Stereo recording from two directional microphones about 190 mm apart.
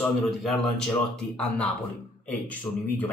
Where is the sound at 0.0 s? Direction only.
5° left (ahead or behind).